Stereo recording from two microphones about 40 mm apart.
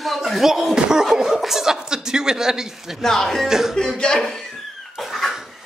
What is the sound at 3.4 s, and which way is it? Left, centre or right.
Speech, centre.